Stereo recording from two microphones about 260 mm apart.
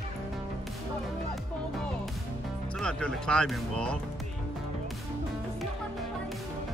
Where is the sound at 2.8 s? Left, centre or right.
Centre.